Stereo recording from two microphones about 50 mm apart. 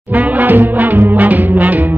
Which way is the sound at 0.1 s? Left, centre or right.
Right.